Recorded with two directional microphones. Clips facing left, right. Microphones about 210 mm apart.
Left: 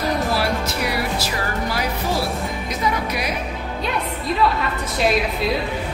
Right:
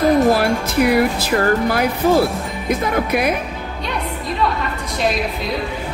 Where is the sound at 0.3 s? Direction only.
50° right (ahead or behind).